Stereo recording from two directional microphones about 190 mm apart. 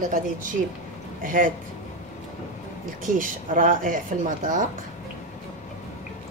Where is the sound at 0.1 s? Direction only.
45° right (ahead or behind).